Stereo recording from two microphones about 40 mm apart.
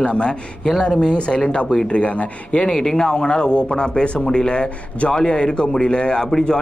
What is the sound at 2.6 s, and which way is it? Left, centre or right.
A man's voice, centre.